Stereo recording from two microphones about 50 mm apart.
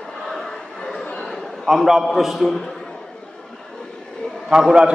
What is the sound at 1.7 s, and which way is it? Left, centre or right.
Speech, centre.